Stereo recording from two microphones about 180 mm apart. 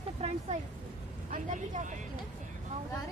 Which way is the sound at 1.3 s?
45° right (ahead or behind).